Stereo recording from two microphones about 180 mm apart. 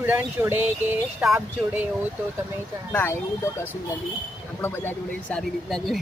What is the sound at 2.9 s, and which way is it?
Speech, 10° left (ahead or behind).